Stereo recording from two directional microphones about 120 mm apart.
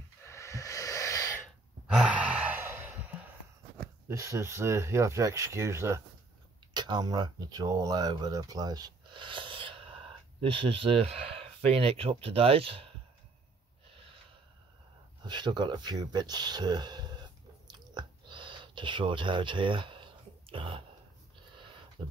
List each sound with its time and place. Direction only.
0.2 s snort: 25° left (ahead or behind)
1.9 s sigh: 10° right (ahead or behind)
4.1 s speech: 25° right (ahead or behind)
6.7 s speech: 35° right (ahead or behind); by 12.9 s 50° right (ahead or behind)
15.2 s speech: 40° right (ahead or behind)
17.6 s chewing: 40° right (ahead or behind)